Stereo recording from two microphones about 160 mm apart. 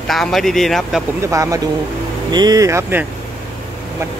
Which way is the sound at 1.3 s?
20° right (ahead or behind).